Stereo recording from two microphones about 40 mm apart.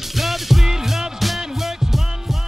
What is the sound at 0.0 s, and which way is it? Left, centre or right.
Music, centre.